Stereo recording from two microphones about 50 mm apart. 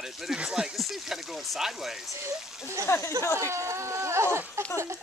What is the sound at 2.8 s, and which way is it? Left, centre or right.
Speech, left.